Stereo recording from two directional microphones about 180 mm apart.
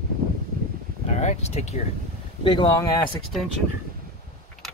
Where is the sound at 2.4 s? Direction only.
25° left (ahead or behind).